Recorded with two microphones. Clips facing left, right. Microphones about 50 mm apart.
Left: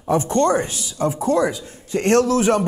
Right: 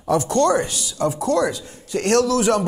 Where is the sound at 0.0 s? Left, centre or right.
Left.